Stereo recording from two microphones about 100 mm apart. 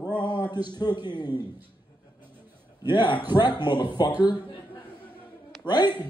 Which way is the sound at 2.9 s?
50° left (ahead or behind).